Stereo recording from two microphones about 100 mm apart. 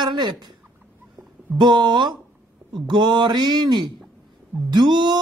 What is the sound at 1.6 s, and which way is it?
Speech, 45° right (ahead or behind).